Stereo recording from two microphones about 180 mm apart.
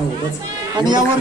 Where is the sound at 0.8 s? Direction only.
25° right (ahead or behind).